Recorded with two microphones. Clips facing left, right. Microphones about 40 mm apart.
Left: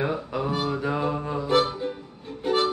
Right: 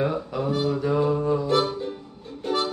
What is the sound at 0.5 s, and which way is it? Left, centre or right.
Music, left.